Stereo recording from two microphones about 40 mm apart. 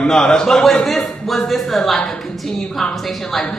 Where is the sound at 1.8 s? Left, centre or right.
Centre.